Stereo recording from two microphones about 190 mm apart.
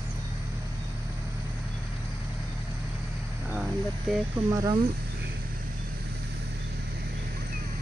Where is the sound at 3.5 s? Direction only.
5° right (ahead or behind).